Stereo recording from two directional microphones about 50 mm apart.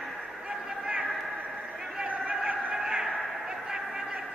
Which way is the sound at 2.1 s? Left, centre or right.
Right.